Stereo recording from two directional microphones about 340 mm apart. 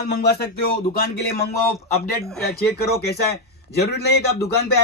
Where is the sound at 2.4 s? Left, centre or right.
Left.